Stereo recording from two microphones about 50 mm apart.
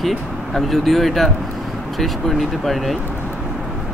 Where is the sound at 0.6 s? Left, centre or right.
Centre.